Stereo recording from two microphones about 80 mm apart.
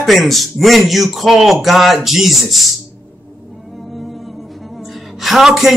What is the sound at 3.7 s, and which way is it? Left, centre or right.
Music, centre.